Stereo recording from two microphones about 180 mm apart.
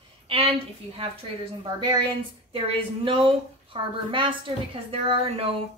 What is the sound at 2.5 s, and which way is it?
A woman's voice, 30° right (ahead or behind).